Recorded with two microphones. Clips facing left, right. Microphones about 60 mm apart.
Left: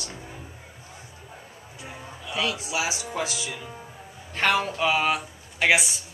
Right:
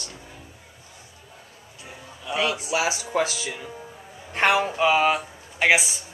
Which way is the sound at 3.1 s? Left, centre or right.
Right.